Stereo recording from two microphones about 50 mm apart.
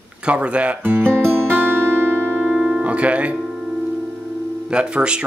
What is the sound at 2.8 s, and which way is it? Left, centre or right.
Speech, right.